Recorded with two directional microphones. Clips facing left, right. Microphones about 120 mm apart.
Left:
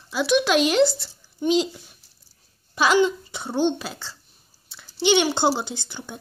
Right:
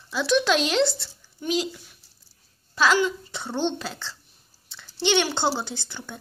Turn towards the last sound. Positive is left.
turn(degrees=15)  # may be behind; listen again after turning